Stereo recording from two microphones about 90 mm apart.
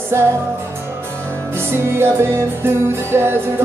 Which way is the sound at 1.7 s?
25° right (ahead or behind).